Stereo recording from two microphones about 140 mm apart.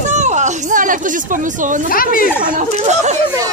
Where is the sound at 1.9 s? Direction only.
90° left.